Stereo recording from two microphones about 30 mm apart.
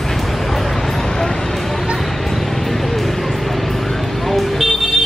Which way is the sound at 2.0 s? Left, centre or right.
Centre.